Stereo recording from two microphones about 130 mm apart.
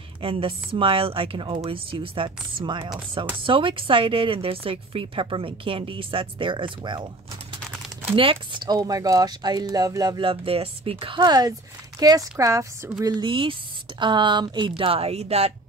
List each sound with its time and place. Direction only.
0.2 s a woman's voice: 45° right (ahead or behind)
8.1 s a woman's voice: 45° right (ahead or behind)
8.6 s speech: 30° right (ahead or behind)
10.2 s a woman's voice: 45° right (ahead or behind); by 12.9 s 25° right (ahead or behind)
13.0 s speech: 35° right (ahead or behind)
14.8 s a woman's voice: 45° right (ahead or behind)